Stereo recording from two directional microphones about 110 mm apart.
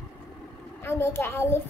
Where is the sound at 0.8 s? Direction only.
25° left (ahead or behind).